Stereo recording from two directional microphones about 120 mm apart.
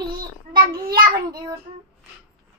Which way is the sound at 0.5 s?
35° right (ahead or behind).